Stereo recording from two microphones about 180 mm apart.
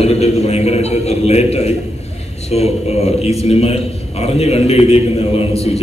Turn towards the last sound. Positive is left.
turn(degrees=35)  # may be behind; listen again after turning